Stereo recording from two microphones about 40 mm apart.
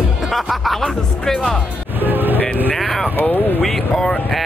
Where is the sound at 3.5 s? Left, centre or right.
Centre.